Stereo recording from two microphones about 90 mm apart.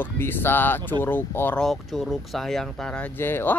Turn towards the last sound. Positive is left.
turn(degrees=25)  # may be behind; listen again after turning